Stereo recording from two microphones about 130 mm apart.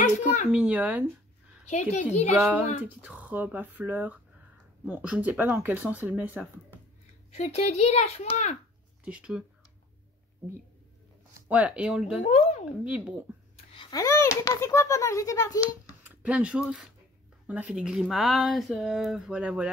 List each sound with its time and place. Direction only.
0.2 s a sound: 70° left (ahead or behind)
0.5 s speech: 10° right (ahead or behind)
1.7 s a woman's voice: 65° left (ahead or behind)
2.3 s speech: 10° right (ahead or behind)
7.3 s speech: 55° left (ahead or behind)
9.0 s speech: 10° right (ahead or behind)
11.3 s speech: 10° right (ahead or behind)
12.2 s speech: 60° left (ahead or behind)
12.8 s speech: 10° right (ahead or behind)
13.9 s a child's voice: 25° left (ahead or behind)
16.0 s speech: 10° right (ahead or behind)